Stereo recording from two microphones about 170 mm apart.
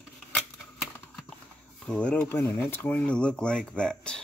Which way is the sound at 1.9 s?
5° left (ahead or behind).